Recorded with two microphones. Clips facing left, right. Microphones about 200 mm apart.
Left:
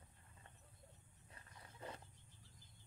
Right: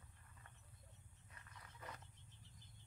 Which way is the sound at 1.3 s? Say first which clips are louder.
Left 2 dB; 30° left (ahead or behind).